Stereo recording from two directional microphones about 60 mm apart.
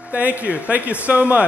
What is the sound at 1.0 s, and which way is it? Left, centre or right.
Music, right.